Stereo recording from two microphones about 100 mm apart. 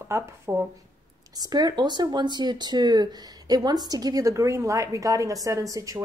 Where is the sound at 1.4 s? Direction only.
40° right (ahead or behind).